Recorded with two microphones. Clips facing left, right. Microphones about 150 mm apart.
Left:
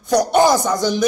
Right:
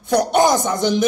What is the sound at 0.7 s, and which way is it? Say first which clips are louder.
Speech: even; 20° right (ahead or behind).